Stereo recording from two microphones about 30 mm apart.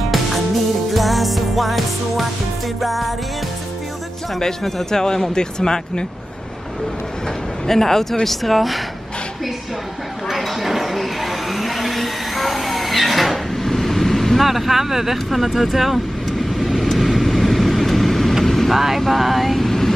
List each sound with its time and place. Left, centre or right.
0.9 s music: centre
2.8 s vehicle: centre
4.4 s speech: centre
7.6 s speech: centre
10.3 s a sound: centre
14.4 s speech: centre
15.2 s vehicle: centre
18.7 s speech: centre
18.9 s vehicle: centre
19.6 s vehicle: centre